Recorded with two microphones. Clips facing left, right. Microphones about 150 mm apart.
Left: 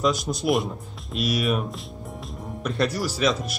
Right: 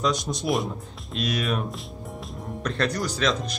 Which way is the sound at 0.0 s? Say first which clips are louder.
Left 2 dB; centre (ahead or behind).